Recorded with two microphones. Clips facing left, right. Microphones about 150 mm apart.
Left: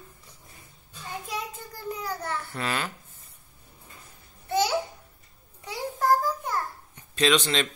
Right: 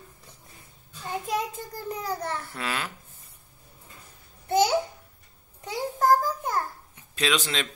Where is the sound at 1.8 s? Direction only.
40° right (ahead or behind).